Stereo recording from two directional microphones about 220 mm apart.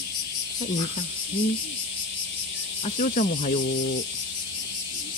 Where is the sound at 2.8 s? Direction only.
35° left (ahead or behind).